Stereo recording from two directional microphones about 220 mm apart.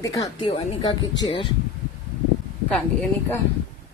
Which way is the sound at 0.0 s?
15° left (ahead or behind).